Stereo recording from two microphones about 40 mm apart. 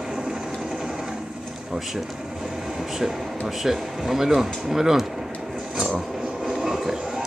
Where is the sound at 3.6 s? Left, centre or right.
Centre.